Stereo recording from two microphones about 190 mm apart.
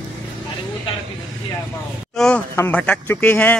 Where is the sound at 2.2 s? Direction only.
5° left (ahead or behind).